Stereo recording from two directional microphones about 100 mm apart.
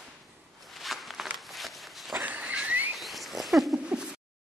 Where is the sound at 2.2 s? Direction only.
15° right (ahead or behind).